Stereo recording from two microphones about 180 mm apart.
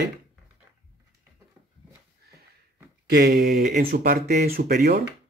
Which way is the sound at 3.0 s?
60° right (ahead or behind).